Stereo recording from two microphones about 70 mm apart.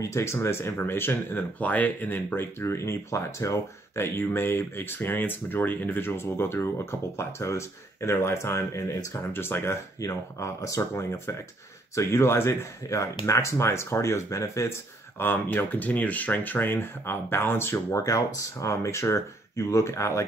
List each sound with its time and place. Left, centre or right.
0.0 s speech: left
9.3 s speech: left
9.9 s speech: left
12.9 s speech: left
15.1 s speech: left
17.9 s speech: left